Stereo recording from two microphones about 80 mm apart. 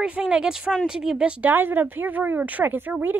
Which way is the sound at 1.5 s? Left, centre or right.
Right.